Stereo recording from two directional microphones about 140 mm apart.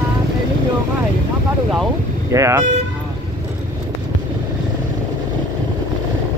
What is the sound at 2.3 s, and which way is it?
Speech, 20° right (ahead or behind).